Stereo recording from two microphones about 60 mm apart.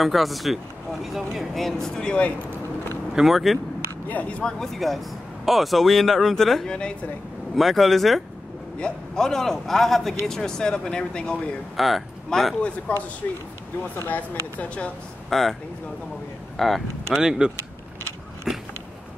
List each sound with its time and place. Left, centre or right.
0.0 s speech: centre
3.2 s speech: centre
4.1 s speech: left
4.4 s speech: centre
4.7 s speech: centre
7.5 s speech: centre
8.7 s speech: centre
11.7 s speech: centre
12.9 s speech: left
15.2 s speech: centre
16.5 s speech: centre
17.2 s speech: centre
18.5 s a sound: centre